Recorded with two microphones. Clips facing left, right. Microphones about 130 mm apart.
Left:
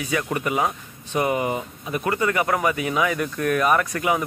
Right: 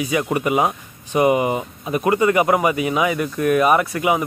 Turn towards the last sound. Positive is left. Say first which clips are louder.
# right 4 dB
turn(degrees=-15)  # may be behind; listen again after turning